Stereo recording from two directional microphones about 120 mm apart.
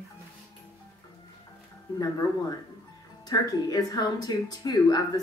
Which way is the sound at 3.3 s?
30° left (ahead or behind).